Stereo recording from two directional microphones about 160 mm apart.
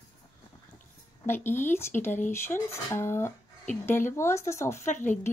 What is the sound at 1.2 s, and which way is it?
A woman's voice, 15° left (ahead or behind).